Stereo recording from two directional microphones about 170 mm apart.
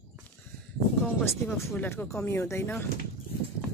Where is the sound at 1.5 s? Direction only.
15° left (ahead or behind).